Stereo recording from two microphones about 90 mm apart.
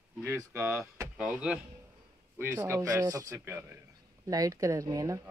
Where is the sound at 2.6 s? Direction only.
40° right (ahead or behind).